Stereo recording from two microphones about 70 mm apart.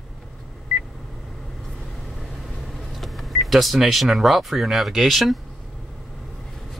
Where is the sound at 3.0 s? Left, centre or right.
Centre.